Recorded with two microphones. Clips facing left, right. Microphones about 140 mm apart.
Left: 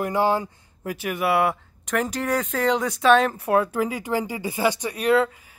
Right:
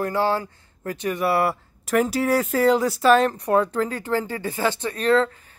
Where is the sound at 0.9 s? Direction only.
5° left (ahead or behind).